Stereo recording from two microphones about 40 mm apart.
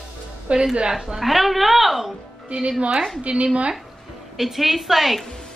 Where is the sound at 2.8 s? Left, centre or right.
Right.